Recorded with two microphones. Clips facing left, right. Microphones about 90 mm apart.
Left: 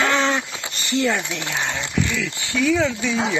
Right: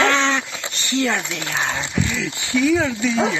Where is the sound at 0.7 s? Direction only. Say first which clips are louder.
Even; 35° left (ahead or behind).